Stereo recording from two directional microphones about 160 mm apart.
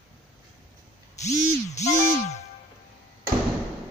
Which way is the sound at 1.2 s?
45° left (ahead or behind).